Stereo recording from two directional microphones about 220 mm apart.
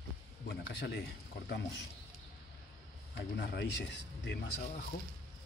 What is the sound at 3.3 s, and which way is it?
Speech, 50° left (ahead or behind).